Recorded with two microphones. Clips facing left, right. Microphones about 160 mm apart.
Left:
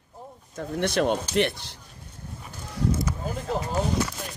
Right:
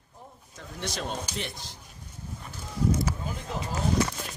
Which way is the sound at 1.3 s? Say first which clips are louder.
Left 12 dB; 70° left (ahead or behind).